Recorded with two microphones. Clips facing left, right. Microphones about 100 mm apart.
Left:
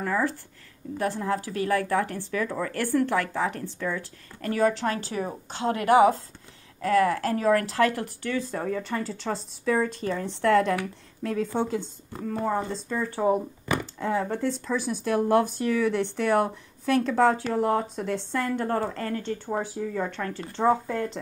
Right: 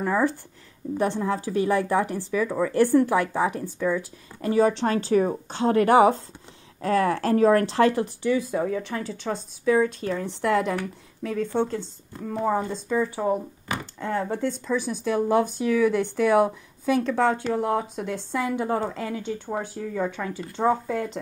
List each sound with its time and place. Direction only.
0.0 s a woman's voice: 20° right (ahead or behind)
10.8 s speech: 5° left (ahead or behind)
12.3 s speech: 5° right (ahead or behind)
13.9 s speech: centre (ahead or behind)